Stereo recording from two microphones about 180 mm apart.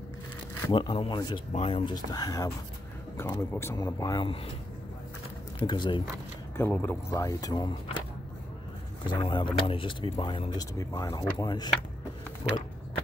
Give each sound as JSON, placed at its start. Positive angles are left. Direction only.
{"t": 0.7, "sound": "speech", "side_deg": 25}
{"t": 5.7, "sound": "speech", "side_deg": 25}
{"t": 6.5, "sound": "speech", "side_deg": 10}
{"t": 9.2, "sound": "speech", "side_deg": 25}